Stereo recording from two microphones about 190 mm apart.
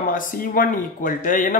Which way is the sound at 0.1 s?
45° left (ahead or behind).